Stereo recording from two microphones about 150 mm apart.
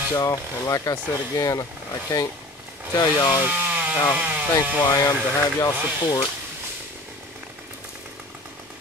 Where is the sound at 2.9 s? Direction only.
25° left (ahead or behind).